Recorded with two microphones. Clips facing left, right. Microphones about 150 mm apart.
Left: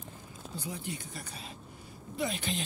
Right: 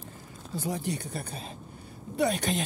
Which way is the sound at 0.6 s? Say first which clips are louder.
Right 8 dB; 45° right (ahead or behind).